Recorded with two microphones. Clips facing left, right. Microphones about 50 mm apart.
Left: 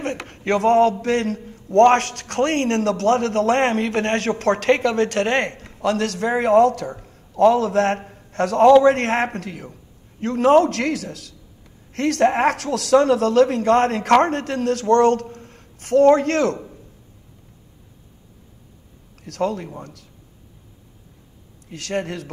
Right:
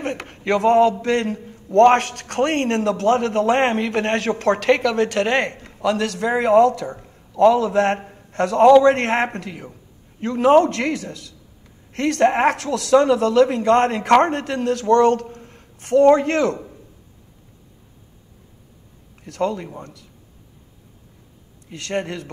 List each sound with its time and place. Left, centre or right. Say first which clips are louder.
0.0 s a sound: even; centre
1.0 s a man's voice: even; right
7.0 s a man's voice: right 1 dB; centre
10.5 s a man's voice: right 1 dB; centre
11.9 s a woman's voice: right 1 dB; right
14.2 s a man's voice: even; right; by 16.8 s centre
19.2 s a man's voice: even; right